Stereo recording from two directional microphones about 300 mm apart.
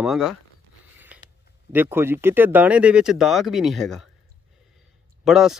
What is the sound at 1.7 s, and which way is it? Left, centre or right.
Speech, centre.